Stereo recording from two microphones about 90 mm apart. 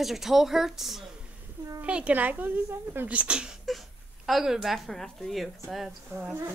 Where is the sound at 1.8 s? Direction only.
15° right (ahead or behind).